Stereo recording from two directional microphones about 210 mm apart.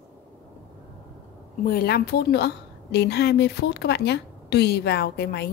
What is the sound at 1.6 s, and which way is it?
A woman's voice, 45° left (ahead or behind).